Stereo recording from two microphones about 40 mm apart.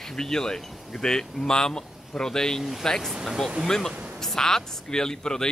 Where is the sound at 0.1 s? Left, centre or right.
Centre.